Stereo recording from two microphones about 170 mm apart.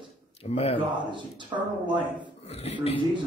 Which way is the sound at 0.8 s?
25° right (ahead or behind).